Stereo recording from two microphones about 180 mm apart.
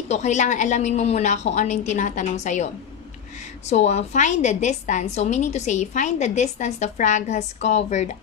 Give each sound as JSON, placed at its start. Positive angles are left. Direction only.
{"t": 0.1, "sound": "a woman's voice", "side_deg": 40}